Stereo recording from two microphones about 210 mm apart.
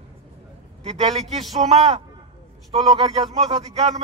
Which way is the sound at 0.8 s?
30° right (ahead or behind).